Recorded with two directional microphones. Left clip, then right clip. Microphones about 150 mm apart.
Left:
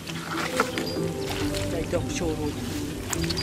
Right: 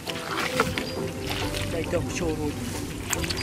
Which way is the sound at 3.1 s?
Centre (ahead or behind).